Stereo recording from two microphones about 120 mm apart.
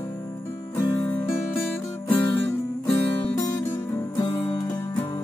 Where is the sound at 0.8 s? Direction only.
35° left (ahead or behind).